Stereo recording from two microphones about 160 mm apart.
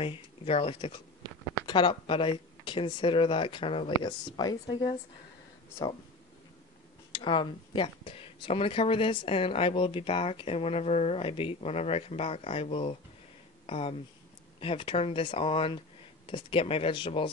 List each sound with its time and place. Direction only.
0.0 s a woman's voice: 35° left (ahead or behind)
7.1 s speech: 30° left (ahead or behind)